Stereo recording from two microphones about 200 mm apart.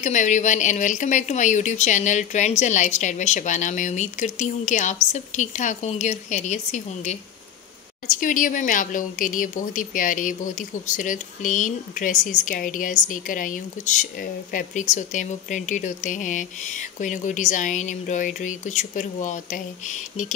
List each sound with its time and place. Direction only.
0.0 s a woman's voice: 35° left (ahead or behind)
8.2 s a woman's voice: 40° left (ahead or behind)